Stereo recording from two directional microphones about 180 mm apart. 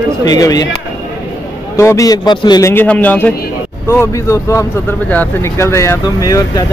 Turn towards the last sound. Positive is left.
turn(degrees=20)  # may be behind; listen again after turning